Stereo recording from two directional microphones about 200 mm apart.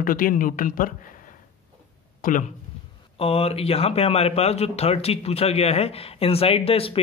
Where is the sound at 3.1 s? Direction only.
30° left (ahead or behind).